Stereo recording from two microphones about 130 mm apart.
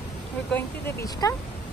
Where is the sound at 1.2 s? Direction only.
25° left (ahead or behind).